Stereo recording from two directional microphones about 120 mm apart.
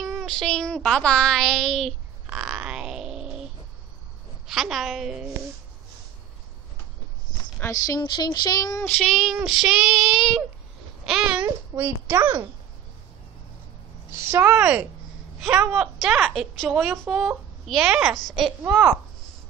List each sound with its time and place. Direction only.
0.0 s speech: centre (ahead or behind)
2.2 s a sound: 10° right (ahead or behind)
4.5 s speech: centre (ahead or behind)
7.6 s speech: 30° left (ahead or behind)
8.0 s child singing: 35° left (ahead or behind)
8.8 s child singing: 10° left (ahead or behind)
9.1 s a child's voice: centre (ahead or behind); by 12.2 s 15° right (ahead or behind)
14.1 s a woman's voice: 20° right (ahead or behind); by 18.5 s centre (ahead or behind)